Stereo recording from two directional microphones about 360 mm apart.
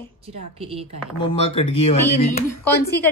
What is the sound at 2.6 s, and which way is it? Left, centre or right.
Speech, centre.